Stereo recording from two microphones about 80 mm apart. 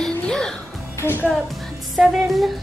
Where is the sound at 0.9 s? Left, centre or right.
Left.